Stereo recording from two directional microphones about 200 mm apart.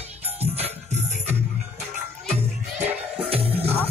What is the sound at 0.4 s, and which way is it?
Music, 30° right (ahead or behind).